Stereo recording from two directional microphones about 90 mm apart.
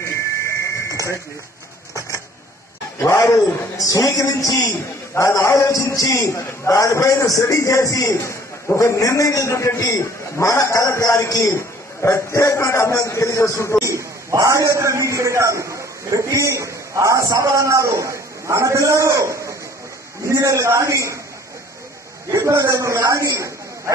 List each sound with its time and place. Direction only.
0.5 s a sound: 35° left (ahead or behind)
3.0 s a man's voice: 35° left (ahead or behind)
13.8 s a man's voice: 35° right (ahead or behind)
22.3 s a man's voice: 30° right (ahead or behind)